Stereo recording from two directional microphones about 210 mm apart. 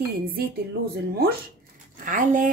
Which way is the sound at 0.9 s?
50° right (ahead or behind).